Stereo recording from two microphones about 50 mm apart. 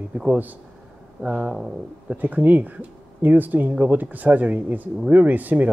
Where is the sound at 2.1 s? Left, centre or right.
Right.